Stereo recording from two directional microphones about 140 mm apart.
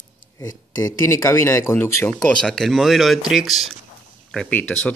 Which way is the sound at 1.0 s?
20° left (ahead or behind).